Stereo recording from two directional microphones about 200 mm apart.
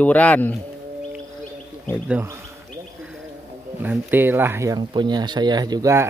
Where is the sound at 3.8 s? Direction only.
10° right (ahead or behind).